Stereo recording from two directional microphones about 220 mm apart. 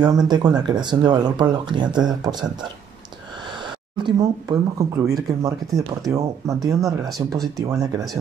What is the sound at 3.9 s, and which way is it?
Speech, 20° right (ahead or behind).